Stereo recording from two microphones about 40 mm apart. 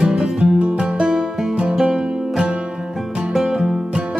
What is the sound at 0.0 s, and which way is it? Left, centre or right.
Music, right.